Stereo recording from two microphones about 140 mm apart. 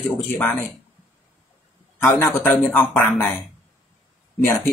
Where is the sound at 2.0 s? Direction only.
15° left (ahead or behind).